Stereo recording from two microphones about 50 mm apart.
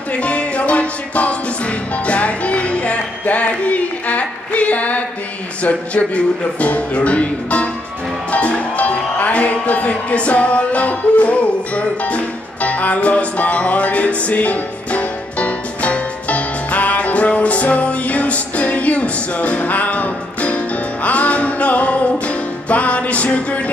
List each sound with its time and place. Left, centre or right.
0.1 s music: left
5.6 s speech: left
8.3 s music: left